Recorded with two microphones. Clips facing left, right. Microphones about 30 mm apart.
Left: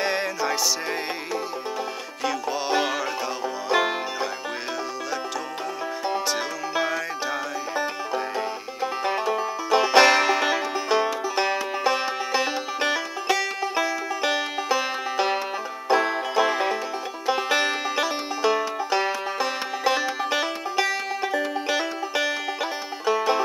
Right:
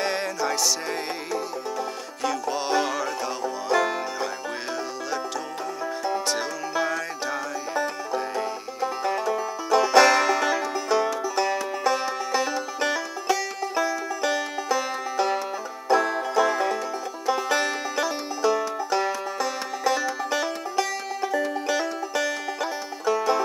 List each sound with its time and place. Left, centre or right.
0.0 s music: centre
2.2 s music: centre
3.4 s music: left
6.7 s music: centre